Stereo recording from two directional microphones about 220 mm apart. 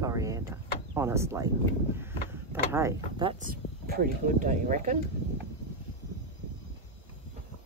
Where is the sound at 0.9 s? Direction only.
10° right (ahead or behind).